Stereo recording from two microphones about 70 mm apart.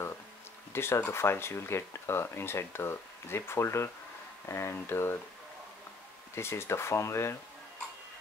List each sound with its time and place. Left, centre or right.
0.7 s speech: left
6.3 s speech: left